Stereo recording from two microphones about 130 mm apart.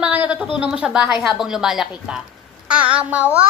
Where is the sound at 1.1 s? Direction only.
5° right (ahead or behind).